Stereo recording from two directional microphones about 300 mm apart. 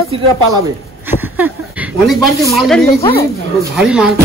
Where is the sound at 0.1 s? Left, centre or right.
Centre.